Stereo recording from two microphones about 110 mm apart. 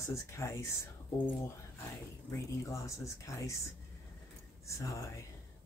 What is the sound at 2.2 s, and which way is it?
Speech, 30° left (ahead or behind).